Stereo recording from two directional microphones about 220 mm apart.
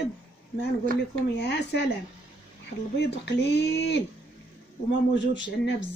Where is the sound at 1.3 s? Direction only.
50° left (ahead or behind).